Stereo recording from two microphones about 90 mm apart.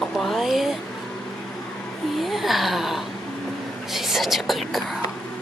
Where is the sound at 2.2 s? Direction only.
Centre (ahead or behind).